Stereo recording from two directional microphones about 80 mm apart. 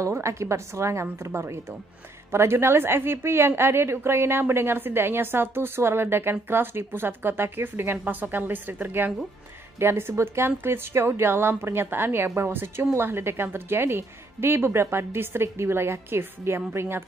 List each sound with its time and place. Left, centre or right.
0.0 s a woman's voice: right